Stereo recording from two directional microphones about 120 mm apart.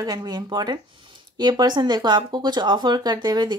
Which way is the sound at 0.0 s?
35° right (ahead or behind).